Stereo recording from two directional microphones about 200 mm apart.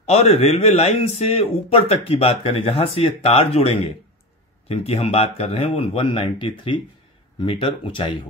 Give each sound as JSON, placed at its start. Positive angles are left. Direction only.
{"t": 0.1, "sound": "a man's voice", "side_deg": 30}